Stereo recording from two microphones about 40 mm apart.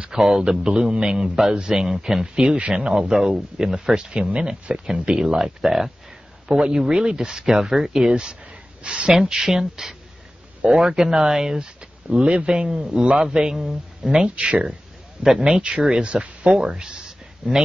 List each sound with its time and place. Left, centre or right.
0.1 s a man's voice: centre
2.2 s a man's voice: right
8.1 s a man's voice: right
9.1 s a man's voice: centre
14.2 s a man's voice: right
15.2 s speech: centre
16.0 s a man's voice: right
17.4 s speech: centre